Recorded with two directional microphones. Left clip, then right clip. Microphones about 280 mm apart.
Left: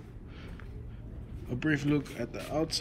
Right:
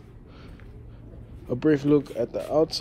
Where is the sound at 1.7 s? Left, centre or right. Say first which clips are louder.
Right 9 dB; centre.